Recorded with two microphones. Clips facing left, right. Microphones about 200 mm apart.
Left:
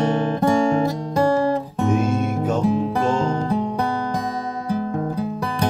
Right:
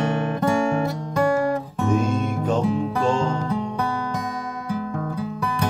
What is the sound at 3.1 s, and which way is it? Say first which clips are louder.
Music: left 2 dB; 40° left (ahead or behind).